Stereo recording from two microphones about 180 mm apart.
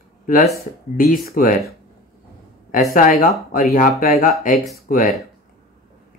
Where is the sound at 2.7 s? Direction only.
50° left (ahead or behind).